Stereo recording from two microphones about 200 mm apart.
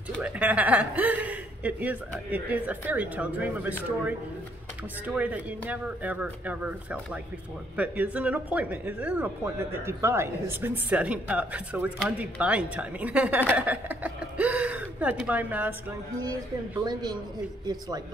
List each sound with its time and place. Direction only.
0.2 s speech: 5° right (ahead or behind)
16.8 s speech: 20° right (ahead or behind)